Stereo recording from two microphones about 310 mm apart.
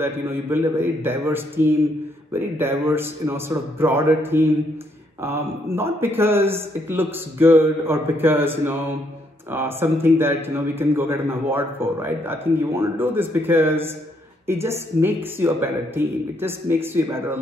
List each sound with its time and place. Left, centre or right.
0.0 s a man's voice: centre